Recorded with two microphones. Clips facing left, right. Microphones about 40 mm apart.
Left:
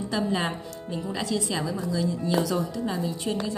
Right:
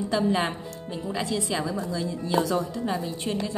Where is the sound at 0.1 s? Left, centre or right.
Right.